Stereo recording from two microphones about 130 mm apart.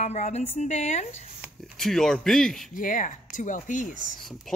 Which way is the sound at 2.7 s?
90° left.